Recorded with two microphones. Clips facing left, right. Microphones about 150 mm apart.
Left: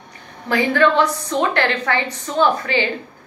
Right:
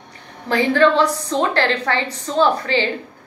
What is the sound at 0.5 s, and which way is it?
A woman's voice, 30° right (ahead or behind).